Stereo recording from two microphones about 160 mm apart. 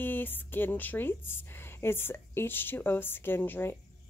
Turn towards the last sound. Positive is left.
turn(degrees=15)  # may be behind; listen again after turning